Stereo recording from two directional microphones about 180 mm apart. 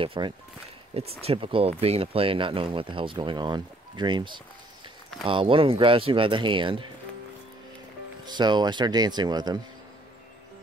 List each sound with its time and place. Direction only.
0.0 s speech: 30° right (ahead or behind)
8.3 s speech: 25° right (ahead or behind)